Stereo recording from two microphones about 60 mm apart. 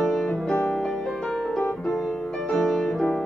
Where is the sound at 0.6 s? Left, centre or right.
Left.